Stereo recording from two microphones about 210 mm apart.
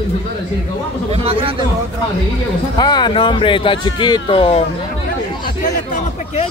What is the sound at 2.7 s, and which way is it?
Speech, 20° left (ahead or behind).